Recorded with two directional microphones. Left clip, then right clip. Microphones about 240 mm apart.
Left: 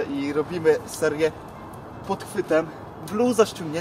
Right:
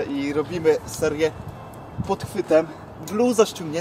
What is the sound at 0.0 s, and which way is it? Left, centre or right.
Speech, centre.